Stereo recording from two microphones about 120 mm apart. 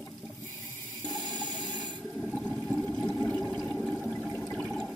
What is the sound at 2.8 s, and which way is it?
Toilet flush, 10° left (ahead or behind).